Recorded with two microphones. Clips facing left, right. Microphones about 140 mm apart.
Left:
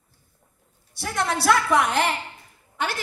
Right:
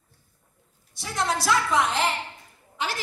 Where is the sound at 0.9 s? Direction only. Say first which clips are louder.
Left 1 dB; 60° left (ahead or behind).